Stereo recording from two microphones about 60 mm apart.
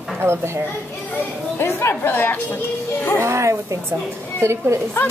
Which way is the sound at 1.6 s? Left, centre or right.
Left.